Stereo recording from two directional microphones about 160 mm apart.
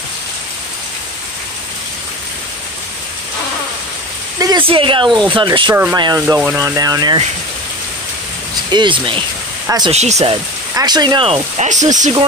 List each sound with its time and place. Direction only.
4.4 s a sound: 25° right (ahead or behind)
4.6 s speech: 30° right (ahead or behind)
6.2 s speech: 15° right (ahead or behind)
8.6 s speech: 30° right (ahead or behind)
9.8 s speech: 45° right (ahead or behind)
10.8 s speech: 25° right (ahead or behind)
11.2 s speech: 40° right (ahead or behind)